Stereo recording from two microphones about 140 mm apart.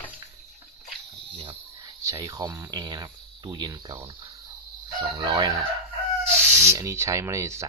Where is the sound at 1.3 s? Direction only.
35° right (ahead or behind).